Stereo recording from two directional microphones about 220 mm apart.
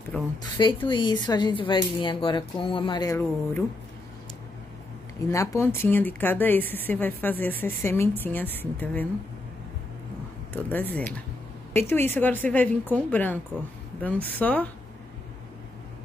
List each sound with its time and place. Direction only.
0.4 s speech: 20° left (ahead or behind)
5.3 s a woman's voice: 15° left (ahead or behind)
10.5 s a woman's voice: 10° left (ahead or behind)